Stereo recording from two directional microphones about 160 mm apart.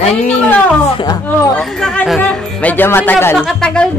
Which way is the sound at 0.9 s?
25° left (ahead or behind).